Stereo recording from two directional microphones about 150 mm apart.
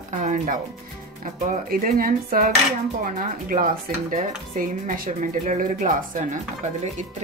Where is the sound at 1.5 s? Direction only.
70° right (ahead or behind).